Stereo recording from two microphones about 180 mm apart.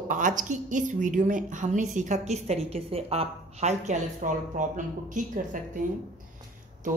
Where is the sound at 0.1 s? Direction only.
45° right (ahead or behind).